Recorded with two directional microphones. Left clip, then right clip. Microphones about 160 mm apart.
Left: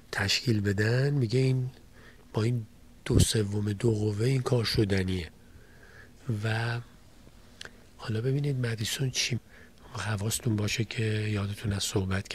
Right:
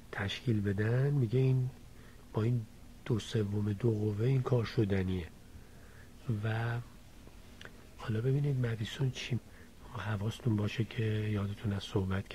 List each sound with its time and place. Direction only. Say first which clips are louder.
0.1 s speech: left 9 dB; 20° left (ahead or behind)